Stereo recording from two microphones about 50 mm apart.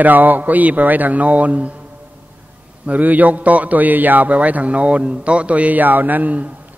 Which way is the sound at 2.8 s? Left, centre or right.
Right.